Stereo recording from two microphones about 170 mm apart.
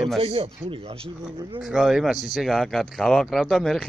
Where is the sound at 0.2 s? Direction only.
35° right (ahead or behind).